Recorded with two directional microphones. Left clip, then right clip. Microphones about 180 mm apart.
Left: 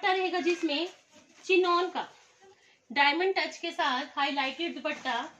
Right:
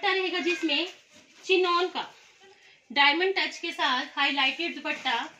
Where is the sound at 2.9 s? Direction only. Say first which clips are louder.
Right 3 dB; 10° left (ahead or behind).